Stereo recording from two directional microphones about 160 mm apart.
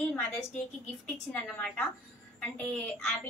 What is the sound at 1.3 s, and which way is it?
A woman's voice, 5° left (ahead or behind).